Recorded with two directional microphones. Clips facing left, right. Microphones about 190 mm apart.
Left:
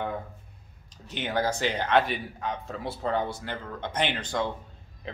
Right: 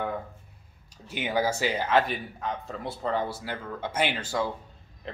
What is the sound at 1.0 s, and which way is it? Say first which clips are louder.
Speech: right 1 dB; 10° right (ahead or behind).